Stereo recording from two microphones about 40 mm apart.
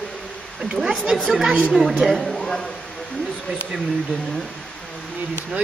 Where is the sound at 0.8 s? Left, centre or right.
Centre.